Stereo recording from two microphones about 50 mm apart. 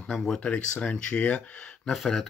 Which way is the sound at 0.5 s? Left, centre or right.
Left.